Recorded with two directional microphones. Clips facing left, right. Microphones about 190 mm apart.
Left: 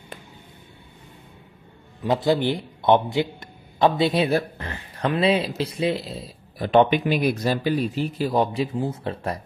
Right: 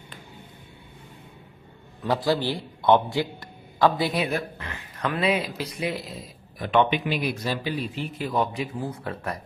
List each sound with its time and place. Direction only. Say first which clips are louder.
2.0 s a man's voice: left 3 dB; 20° left (ahead or behind)